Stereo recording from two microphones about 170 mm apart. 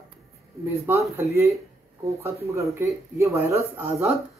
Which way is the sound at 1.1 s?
15° right (ahead or behind).